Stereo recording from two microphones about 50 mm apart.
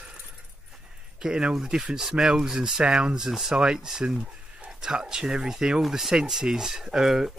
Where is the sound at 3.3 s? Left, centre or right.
Centre.